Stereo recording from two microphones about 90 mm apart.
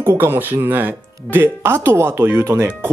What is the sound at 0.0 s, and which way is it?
Speech, 30° right (ahead or behind).